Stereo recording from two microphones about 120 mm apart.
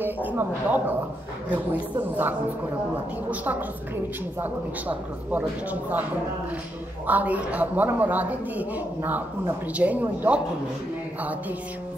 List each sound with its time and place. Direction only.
0.0 s speech: 15° right (ahead or behind)
4.4 s speech: 15° right (ahead or behind)
7.1 s speech: 15° right (ahead or behind)